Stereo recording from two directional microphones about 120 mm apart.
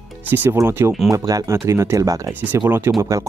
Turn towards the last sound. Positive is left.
turn(degrees=-25)  # may be behind; listen again after turning